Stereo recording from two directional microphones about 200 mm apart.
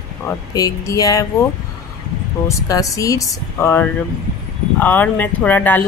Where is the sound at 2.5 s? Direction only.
15° left (ahead or behind).